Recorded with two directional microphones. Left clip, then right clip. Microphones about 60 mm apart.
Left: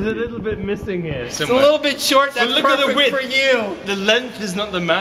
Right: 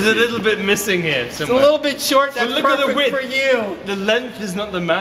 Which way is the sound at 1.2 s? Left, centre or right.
Centre.